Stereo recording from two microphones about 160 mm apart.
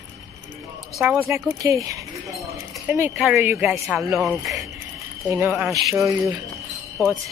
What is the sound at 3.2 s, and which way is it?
Speech, centre (ahead or behind).